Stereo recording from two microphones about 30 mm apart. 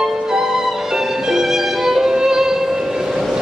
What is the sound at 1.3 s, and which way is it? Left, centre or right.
Violin, centre.